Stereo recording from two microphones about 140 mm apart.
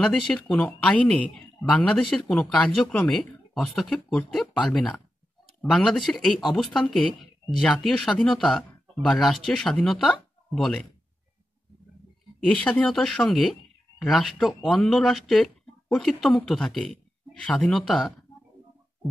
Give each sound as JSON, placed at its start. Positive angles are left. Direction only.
{"t": 0.0, "sound": "speech", "side_deg": 5}
{"t": 12.4, "sound": "speech", "side_deg": 10}